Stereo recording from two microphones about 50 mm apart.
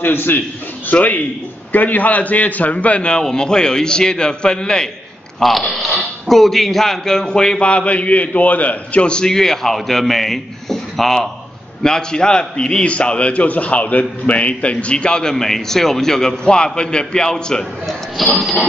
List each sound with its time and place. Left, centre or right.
0.0 s a man's voice: left
0.9 s a man's voice: left
1.7 s a man's voice: left
9.0 s a man's voice: centre
11.8 s a man's voice: centre